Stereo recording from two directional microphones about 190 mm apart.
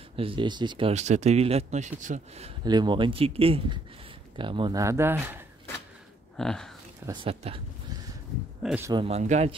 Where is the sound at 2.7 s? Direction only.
25° right (ahead or behind).